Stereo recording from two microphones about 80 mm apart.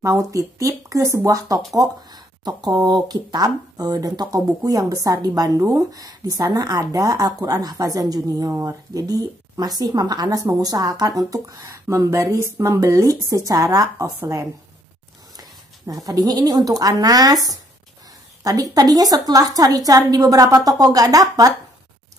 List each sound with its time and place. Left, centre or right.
0.0 s a woman's voice: right
15.9 s speech: right